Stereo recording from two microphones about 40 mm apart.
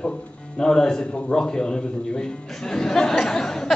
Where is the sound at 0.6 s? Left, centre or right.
Centre.